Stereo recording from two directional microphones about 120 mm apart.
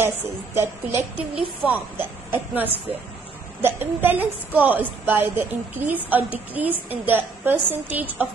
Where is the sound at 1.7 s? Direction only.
15° right (ahead or behind).